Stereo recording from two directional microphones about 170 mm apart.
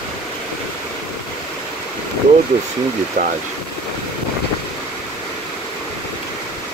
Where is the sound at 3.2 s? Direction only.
55° right (ahead or behind).